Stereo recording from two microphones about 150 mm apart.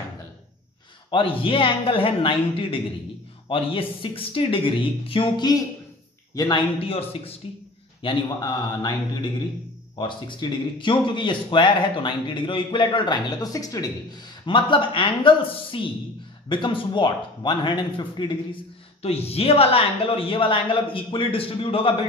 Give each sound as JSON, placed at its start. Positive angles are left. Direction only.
{"t": 1.1, "sound": "a man's voice", "side_deg": 35}
{"t": 6.8, "sound": "a man's voice", "side_deg": 40}
{"t": 9.9, "sound": "speech", "side_deg": 30}
{"t": 19.0, "sound": "speech", "side_deg": 40}